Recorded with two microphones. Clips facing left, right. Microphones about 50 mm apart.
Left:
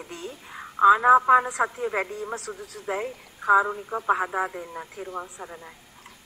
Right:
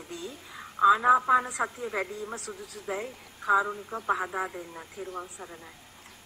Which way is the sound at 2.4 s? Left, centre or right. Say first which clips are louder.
Left 3 dB; left.